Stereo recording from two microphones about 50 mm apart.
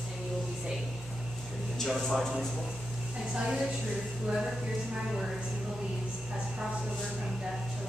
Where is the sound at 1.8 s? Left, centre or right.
Centre.